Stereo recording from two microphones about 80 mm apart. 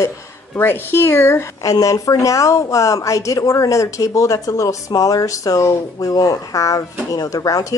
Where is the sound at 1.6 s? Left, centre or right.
Left.